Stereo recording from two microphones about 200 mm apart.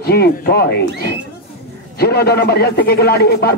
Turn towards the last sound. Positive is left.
turn(degrees=50)  # may be behind; listen again after turning